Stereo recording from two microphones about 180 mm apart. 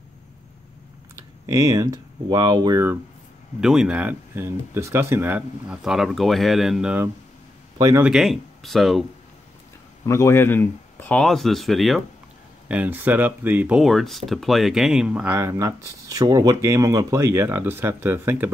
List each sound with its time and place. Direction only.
1.4 s speech: 20° right (ahead or behind)
3.6 s speech: 5° right (ahead or behind)
7.7 s speech: 20° right (ahead or behind)
8.0 s speech: centre (ahead or behind)
10.0 s speech: 15° left (ahead or behind); by 18.5 s 10° right (ahead or behind)